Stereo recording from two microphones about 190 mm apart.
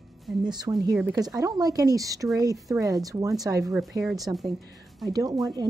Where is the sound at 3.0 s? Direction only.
20° right (ahead or behind).